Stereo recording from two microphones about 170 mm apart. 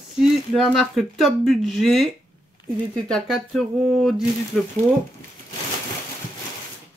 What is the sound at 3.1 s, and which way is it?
Speech, centre (ahead or behind).